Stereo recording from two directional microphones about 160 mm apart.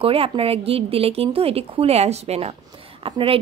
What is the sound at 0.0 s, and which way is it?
Speech, 35° right (ahead or behind).